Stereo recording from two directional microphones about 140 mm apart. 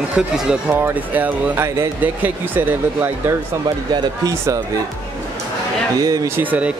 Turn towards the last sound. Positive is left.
turn(degrees=-10)  # may be behind; listen again after turning